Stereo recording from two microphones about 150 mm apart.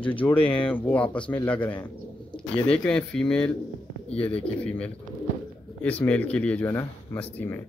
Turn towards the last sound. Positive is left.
turn(degrees=10)  # may be behind; listen again after turning